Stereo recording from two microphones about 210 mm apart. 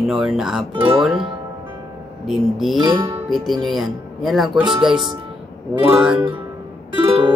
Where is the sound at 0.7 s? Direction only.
25° right (ahead or behind).